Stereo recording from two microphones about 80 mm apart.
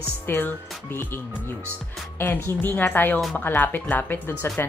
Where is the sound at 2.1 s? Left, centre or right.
Left.